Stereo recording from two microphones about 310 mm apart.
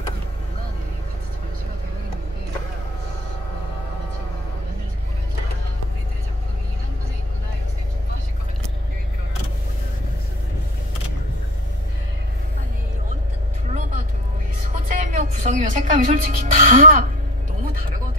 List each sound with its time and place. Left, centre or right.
14.9 s music: right